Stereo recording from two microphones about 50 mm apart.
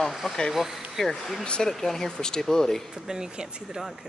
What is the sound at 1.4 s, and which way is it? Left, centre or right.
Speech, centre.